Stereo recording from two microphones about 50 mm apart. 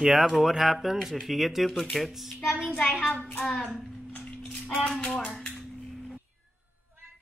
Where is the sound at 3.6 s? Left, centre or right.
Centre.